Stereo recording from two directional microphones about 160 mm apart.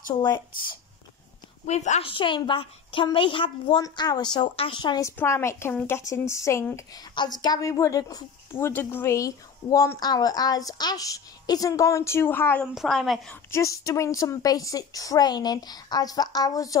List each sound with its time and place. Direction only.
0.1 s speech: 25° left (ahead or behind)
1.7 s a woman's voice: 45° left (ahead or behind); by 5.1 s 25° left (ahead or behind)
5.1 s speech: 15° left (ahead or behind)
12.7 s a woman's voice: centre (ahead or behind)
13.5 s speech: 20° left (ahead or behind)